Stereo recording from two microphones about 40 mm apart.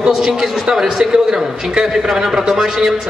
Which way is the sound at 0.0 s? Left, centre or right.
Centre.